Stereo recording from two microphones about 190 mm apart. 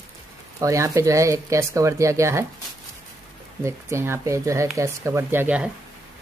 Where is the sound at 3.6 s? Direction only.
15° right (ahead or behind).